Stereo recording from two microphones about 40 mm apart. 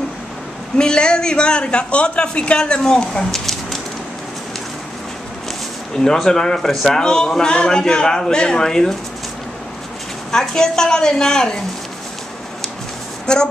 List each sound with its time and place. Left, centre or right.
0.7 s a man's voice: left
2.8 s speech: centre
6.2 s a woman's voice: centre
10.5 s a woman's voice: centre
13.3 s a man's voice: left